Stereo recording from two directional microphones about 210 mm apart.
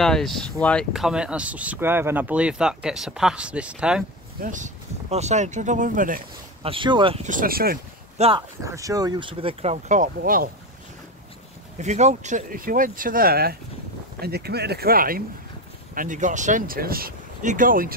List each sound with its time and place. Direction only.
0.0 s speech: centre (ahead or behind)
4.4 s speech: 35° right (ahead or behind)
6.6 s speech: 25° right (ahead or behind)
7.2 s speech: 40° right (ahead or behind)
8.2 s speech: 25° right (ahead or behind)
8.6 s speech: 15° right (ahead or behind); by 10.5 s 40° right (ahead or behind)
11.8 s speech: 35° right (ahead or behind)